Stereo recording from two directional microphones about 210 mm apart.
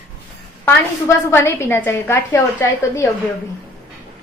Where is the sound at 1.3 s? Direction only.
10° left (ahead or behind).